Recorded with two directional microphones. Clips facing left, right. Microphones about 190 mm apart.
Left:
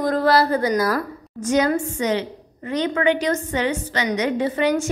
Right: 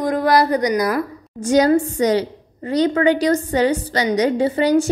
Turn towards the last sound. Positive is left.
turn(degrees=-30)  # may be behind; listen again after turning